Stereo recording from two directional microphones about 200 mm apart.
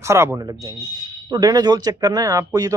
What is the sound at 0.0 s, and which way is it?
Speech, 15° right (ahead or behind).